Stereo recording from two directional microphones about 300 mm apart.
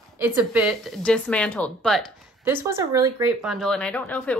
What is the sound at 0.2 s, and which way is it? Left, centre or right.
Speech, centre.